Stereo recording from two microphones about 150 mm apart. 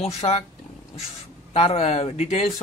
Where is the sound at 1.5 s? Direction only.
45° left (ahead or behind).